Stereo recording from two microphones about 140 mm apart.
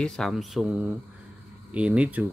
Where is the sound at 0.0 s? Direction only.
5° left (ahead or behind).